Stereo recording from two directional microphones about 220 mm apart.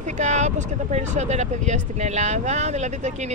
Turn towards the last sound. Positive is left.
turn(degrees=-30)  # may be behind; listen again after turning